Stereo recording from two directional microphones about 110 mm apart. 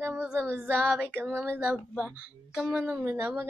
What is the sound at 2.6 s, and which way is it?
Speech, 10° right (ahead or behind).